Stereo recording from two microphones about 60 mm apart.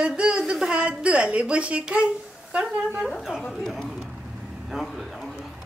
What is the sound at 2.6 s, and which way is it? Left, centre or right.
Speech, centre.